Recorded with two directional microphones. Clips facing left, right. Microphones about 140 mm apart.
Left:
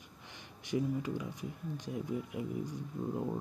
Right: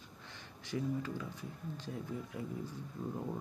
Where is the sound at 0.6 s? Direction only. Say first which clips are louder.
Left 3 dB; 15° left (ahead or behind).